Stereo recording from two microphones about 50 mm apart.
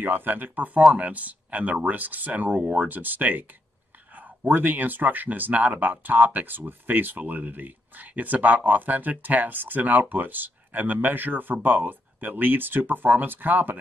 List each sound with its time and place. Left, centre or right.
0.0 s speech: right